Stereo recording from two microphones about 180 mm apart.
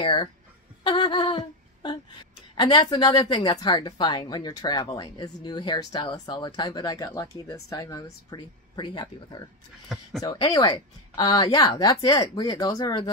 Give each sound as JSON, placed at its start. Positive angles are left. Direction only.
{"t": 0.0, "sound": "a woman's voice", "side_deg": 25}
{"t": 0.8, "sound": "humming", "side_deg": 25}
{"t": 2.5, "sound": "a woman's voice", "side_deg": 25}
{"t": 9.9, "sound": "speech", "side_deg": -5}
{"t": 10.2, "sound": "a woman's voice", "side_deg": 20}